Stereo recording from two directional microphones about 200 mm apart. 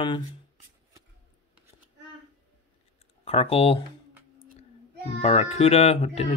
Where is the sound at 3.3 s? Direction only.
30° left (ahead or behind).